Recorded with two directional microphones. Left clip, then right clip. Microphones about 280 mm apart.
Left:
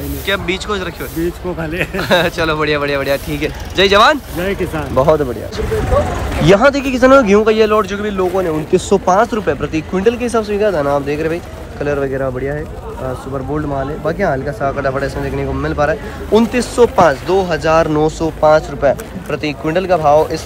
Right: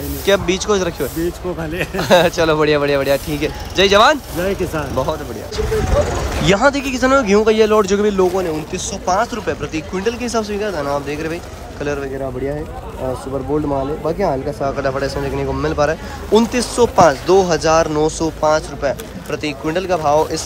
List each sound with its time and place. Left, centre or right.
0.3 s a man's voice: centre
6.4 s a man's voice: centre
13.5 s speech: centre
14.6 s a man's voice: centre